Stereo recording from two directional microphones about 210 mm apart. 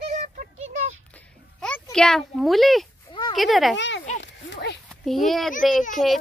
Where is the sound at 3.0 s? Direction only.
20° left (ahead or behind).